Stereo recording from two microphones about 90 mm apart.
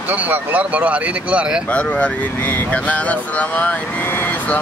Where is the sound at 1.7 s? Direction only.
15° left (ahead or behind).